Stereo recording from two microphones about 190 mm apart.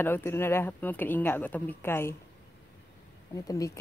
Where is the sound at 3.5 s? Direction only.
20° left (ahead or behind).